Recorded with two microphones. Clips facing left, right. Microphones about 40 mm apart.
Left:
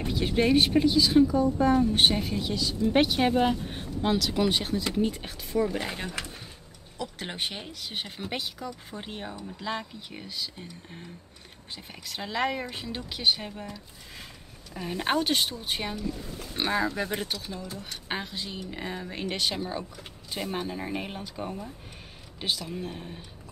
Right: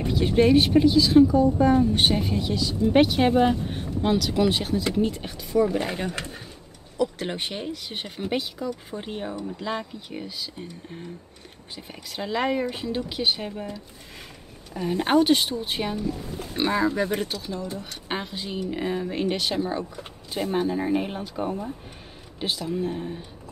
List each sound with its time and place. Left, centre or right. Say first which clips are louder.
0.0 s speech: right 5 dB; centre
6.0 s speech: right 4 dB; right
7.0 s speech: right 7 dB; centre
14.7 s speech: right 6 dB; centre
18.0 s speech: right 2 dB; centre